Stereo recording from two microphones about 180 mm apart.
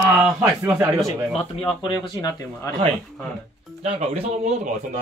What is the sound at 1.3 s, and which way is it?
Speech, 30° left (ahead or behind).